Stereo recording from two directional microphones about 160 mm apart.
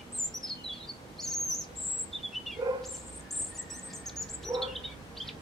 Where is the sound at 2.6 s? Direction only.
20° right (ahead or behind).